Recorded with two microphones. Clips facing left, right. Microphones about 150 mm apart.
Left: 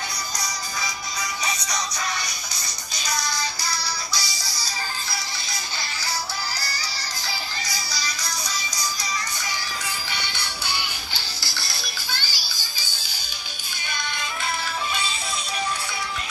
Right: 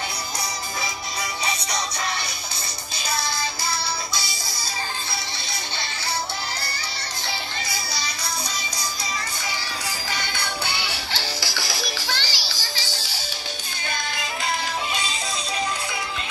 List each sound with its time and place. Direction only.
4.1 s music: 25° right (ahead or behind)
10.1 s music: 50° right (ahead or behind); by 13.0 s 90° right